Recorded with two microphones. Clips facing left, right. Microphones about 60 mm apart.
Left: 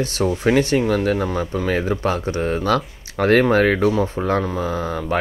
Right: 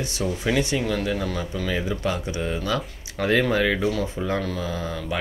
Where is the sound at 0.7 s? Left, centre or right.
Left.